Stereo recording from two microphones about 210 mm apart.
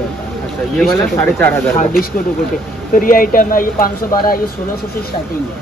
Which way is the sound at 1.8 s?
40° left (ahead or behind).